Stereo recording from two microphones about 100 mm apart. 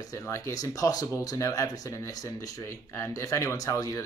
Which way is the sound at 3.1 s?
30° left (ahead or behind).